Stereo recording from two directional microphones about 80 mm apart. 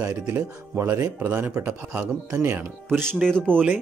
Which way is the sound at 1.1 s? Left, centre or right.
Right.